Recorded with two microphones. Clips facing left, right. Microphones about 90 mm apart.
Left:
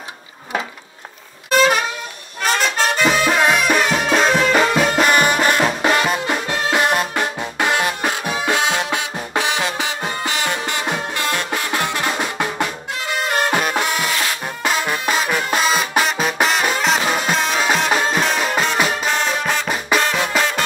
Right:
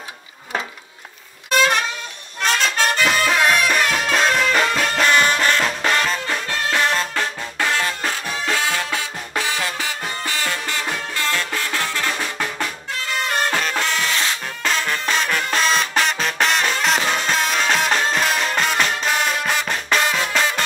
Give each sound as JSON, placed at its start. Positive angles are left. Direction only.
{"t": 1.5, "sound": "music", "side_deg": 5}